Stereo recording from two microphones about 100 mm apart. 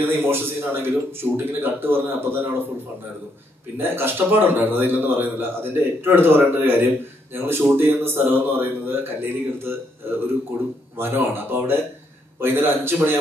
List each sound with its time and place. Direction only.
0.0 s a man's voice: 20° right (ahead or behind)
3.7 s a man's voice: 20° right (ahead or behind)